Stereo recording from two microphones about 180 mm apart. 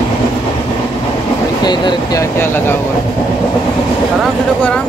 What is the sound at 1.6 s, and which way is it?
Speech, 25° left (ahead or behind).